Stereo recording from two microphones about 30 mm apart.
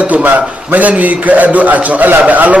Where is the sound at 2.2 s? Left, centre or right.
Right.